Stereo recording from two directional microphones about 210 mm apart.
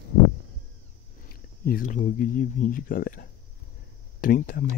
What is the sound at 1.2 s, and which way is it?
Speech, 45° left (ahead or behind).